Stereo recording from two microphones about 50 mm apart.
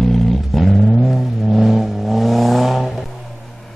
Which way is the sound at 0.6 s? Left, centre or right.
Centre.